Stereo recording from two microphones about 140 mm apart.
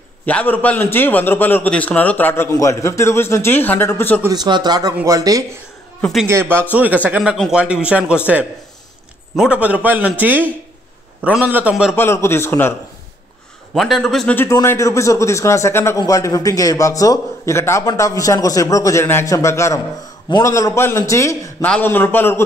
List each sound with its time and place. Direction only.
0.2 s a man's voice: 10° left (ahead or behind)
4.3 s speech: 30° right (ahead or behind); by 11.7 s 10° right (ahead or behind)
11.9 s a man's voice: 15° left (ahead or behind)
13.7 s a man's voice: centre (ahead or behind)
14.3 s a man's voice: 20° left (ahead or behind)